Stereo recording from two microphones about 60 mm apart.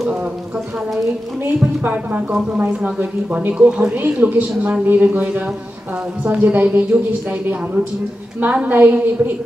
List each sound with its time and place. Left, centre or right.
1.9 s speech: right
3.5 s speech: centre
4.0 s a woman's voice: right